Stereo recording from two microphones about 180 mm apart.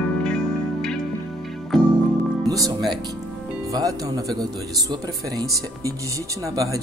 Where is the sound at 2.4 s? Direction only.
20° right (ahead or behind).